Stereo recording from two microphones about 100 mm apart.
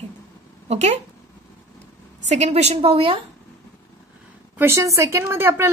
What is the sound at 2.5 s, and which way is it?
Speech, 90° right.